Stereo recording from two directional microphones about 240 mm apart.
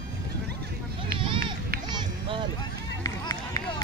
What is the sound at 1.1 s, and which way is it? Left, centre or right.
Run, right.